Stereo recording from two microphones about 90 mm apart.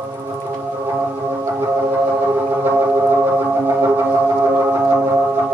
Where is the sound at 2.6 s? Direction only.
25° right (ahead or behind).